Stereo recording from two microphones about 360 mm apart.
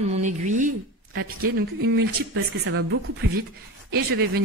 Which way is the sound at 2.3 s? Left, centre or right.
Right.